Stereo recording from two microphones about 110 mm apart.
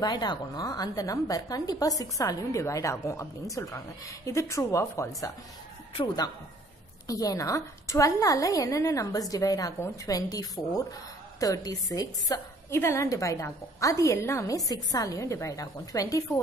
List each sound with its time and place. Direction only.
0.0 s a woman's voice: 40° left (ahead or behind)
7.1 s a woman's voice: 30° left (ahead or behind)